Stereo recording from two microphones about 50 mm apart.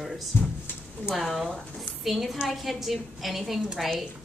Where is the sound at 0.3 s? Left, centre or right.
Left.